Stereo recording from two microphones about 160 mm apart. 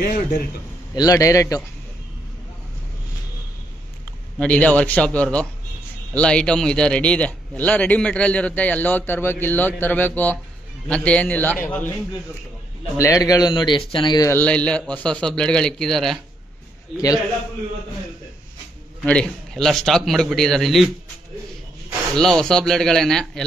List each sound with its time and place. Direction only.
0.0 s a man's voice: 55° left (ahead or behind)
0.9 s speech: 20° left (ahead or behind)
4.4 s a man's voice: 10° left (ahead or behind)
12.9 s speech: 20° left (ahead or behind)
14.3 s a man's voice: 10° left (ahead or behind)
16.9 s speech: 20° left (ahead or behind)
19.0 s a man's voice: 5° left (ahead or behind)
22.1 s a man's voice: 5° left (ahead or behind)